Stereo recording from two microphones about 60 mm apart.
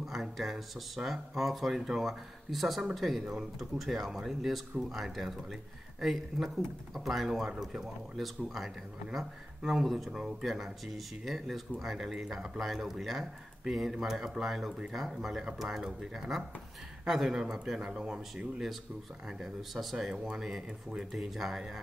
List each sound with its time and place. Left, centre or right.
0.0 s speech: centre